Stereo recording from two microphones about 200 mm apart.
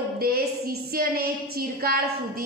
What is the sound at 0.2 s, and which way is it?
A woman's voice, 50° right (ahead or behind).